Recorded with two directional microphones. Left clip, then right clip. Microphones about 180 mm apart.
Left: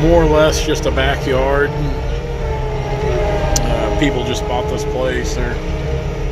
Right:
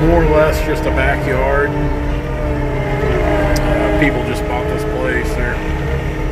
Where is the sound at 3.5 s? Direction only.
15° left (ahead or behind).